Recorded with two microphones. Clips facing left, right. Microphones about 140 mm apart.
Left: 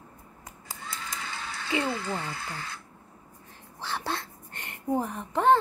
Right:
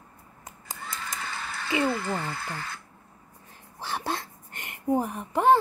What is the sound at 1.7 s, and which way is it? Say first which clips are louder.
Speech: right 3 dB; 30° left (ahead or behind).